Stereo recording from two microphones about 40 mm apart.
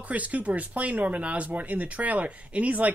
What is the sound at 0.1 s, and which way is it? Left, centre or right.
Speech, right.